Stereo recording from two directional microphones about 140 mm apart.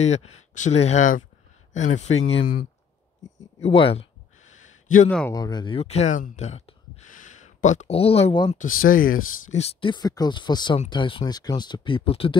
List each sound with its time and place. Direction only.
0.0 s speech: 55° left (ahead or behind)
3.6 s speech: 45° left (ahead or behind)
4.5 s a sound: 60° left (ahead or behind)
5.3 s speech: 30° left (ahead or behind)
5.8 s speech: 50° left (ahead or behind)
8.6 s speech: 85° left
9.5 s speech: 50° left (ahead or behind)